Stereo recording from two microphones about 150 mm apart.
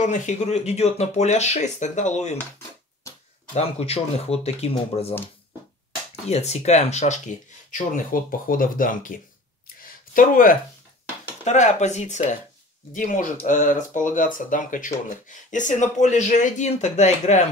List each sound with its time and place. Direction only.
0.0 s speech: 55° left (ahead or behind)
3.5 s speech: 45° left (ahead or behind)
6.2 s speech: 45° left (ahead or behind)
7.7 s speech: 65° left (ahead or behind)
10.1 s speech: 65° left (ahead or behind)
11.4 s speech: 50° left (ahead or behind)